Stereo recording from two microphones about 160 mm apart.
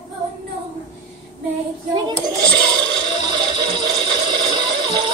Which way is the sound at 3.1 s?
30° right (ahead or behind).